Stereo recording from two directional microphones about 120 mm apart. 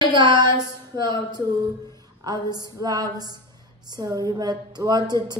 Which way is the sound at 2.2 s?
35° right (ahead or behind).